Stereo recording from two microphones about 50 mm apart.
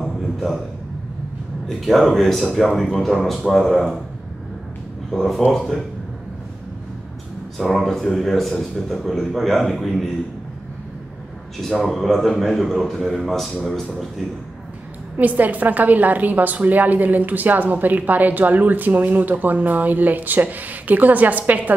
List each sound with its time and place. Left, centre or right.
0.0 s a sound: centre
1.7 s a man's voice: centre
5.1 s a man's voice: centre
7.5 s a man's voice: centre
11.6 s a man's voice: centre
15.1 s a woman's voice: right